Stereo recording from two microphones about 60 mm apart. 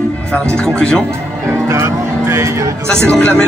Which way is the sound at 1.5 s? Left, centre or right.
Right.